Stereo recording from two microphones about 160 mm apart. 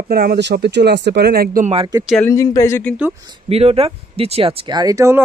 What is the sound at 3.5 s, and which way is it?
Speech, 40° right (ahead or behind).